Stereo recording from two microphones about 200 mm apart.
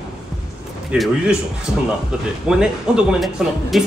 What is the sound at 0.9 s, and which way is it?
Speech, centre (ahead or behind).